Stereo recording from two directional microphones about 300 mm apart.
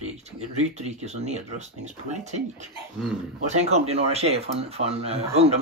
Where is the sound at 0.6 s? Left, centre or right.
Right.